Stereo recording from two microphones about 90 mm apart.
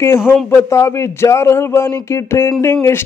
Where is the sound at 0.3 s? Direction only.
25° left (ahead or behind).